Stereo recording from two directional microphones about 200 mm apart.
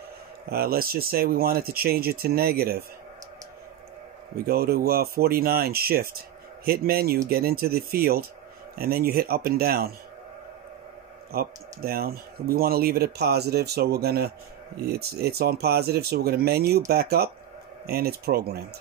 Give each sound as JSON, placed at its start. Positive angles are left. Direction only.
{"t": 0.5, "sound": "speech", "side_deg": -50}
{"t": 4.5, "sound": "speech", "side_deg": -50}
{"t": 11.3, "sound": "speech", "side_deg": -50}